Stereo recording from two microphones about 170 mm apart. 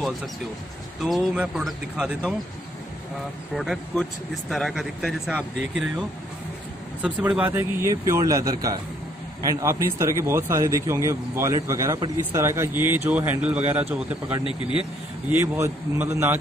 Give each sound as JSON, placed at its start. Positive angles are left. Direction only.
{"t": 1.0, "sound": "speech", "side_deg": -5}
{"t": 3.5, "sound": "speech", "side_deg": 0}